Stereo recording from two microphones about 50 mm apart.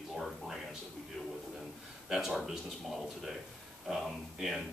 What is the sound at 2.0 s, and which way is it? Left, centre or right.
A man's voice, centre.